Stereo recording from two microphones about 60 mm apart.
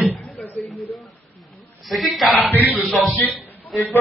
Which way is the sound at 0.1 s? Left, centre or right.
Left.